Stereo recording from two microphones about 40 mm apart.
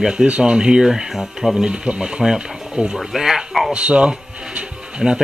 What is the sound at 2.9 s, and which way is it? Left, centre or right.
Speech, centre.